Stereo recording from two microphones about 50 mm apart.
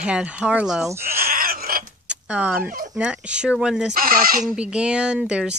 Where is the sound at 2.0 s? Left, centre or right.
Right.